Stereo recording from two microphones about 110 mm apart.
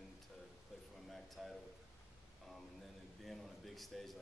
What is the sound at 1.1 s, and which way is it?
Speech, centre (ahead or behind).